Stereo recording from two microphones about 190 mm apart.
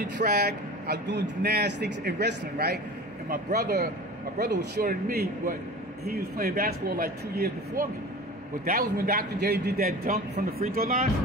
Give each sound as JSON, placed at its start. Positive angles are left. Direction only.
{"t": 0.2, "sound": "a man's voice", "side_deg": -55}